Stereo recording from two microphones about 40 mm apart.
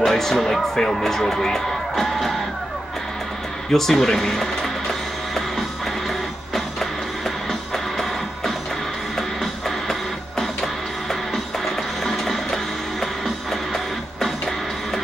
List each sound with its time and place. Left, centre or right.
0.0 s speech: centre
3.7 s speech: centre
6.0 s music: centre